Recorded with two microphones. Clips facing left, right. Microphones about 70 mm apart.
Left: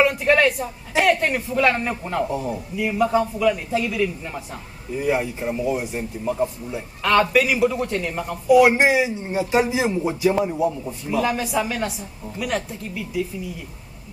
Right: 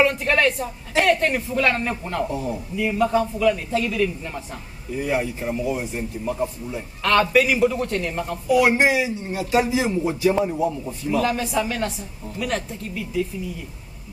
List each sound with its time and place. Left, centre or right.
0.0 s a man's voice: centre
8.5 s a man's voice: centre